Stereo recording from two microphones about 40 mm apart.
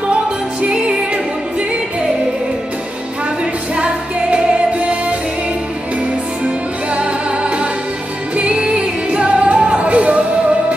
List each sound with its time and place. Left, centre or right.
0.1 s music: right
3.7 s music: right
7.0 s music: right